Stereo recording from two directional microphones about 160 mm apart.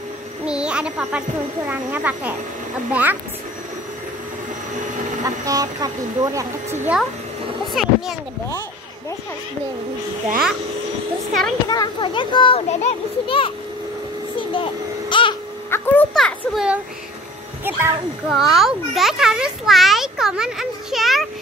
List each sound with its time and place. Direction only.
0.5 s music: 5° right (ahead or behind)
1.7 s speech: 10° right (ahead or behind)
5.2 s speech: 20° right (ahead or behind)
7.7 s speech: centre (ahead or behind)
11.7 s a child's voice: 30° left (ahead or behind)
14.5 s babbling: 30° left (ahead or behind)
15.7 s speech: 10° left (ahead or behind); by 16.8 s 5° right (ahead or behind)
17.6 s speech: 15° right (ahead or behind)
18.3 s a child's voice: centre (ahead or behind)